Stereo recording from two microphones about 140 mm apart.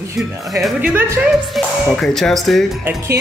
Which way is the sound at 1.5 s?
5° left (ahead or behind).